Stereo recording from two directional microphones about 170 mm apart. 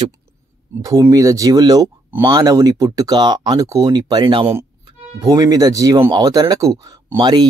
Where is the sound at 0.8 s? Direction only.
20° right (ahead or behind).